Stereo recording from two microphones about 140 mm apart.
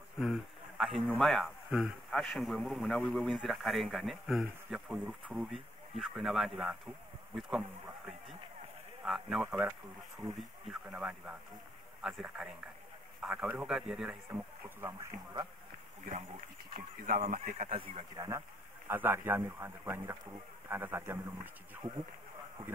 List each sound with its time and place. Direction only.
0.2 s a sound: centre (ahead or behind)
1.1 s a man's voice: centre (ahead or behind)
9.0 s a man's voice: centre (ahead or behind)
10.9 s a man's voice: 10° right (ahead or behind)
16.7 s speech: 90° right; by 17.7 s 55° right (ahead or behind)
17.7 s a man's voice: 40° right (ahead or behind)
18.9 s a man's voice: 15° right (ahead or behind)